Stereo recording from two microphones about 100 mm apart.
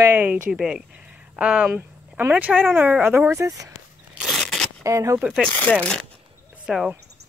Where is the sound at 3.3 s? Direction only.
30° right (ahead or behind).